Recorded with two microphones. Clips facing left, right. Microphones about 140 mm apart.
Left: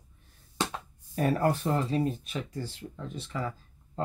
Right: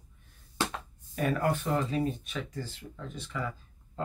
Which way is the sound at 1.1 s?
35° left (ahead or behind).